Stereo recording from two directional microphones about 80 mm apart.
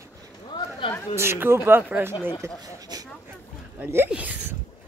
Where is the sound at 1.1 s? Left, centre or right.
Right.